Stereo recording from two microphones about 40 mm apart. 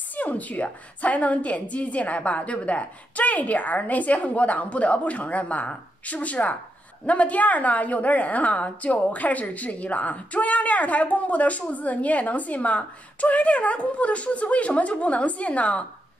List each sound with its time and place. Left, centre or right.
0.1 s a woman's voice: left